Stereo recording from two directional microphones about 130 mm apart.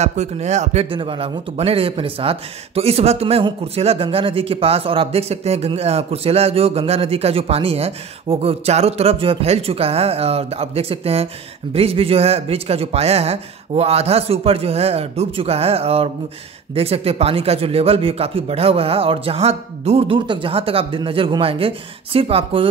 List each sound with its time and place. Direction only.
0.0 s speech: 60° right (ahead or behind)
0.8 s speech: 40° right (ahead or behind)